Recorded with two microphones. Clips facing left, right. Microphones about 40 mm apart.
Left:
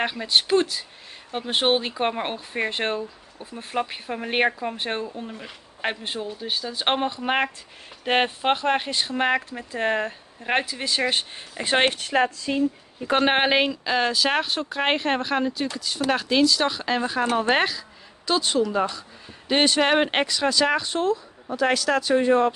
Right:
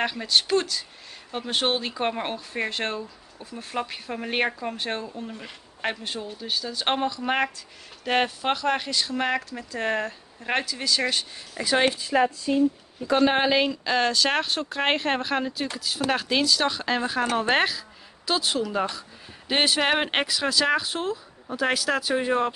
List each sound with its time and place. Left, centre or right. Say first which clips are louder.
0.0 s speech: left 1 dB; centre; by 12.3 s left
12.5 s speech: right 2 dB; left
13.0 s a woman's voice: left 1 dB; left
13.7 s speech: even; centre